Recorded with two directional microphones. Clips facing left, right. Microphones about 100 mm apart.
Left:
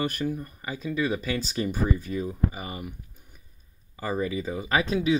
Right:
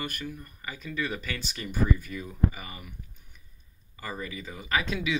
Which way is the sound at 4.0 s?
30° left (ahead or behind).